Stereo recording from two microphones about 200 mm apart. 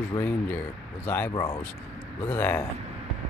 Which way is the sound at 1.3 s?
20° left (ahead or behind).